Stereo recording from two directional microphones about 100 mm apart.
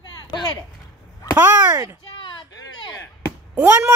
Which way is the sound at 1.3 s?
25° right (ahead or behind).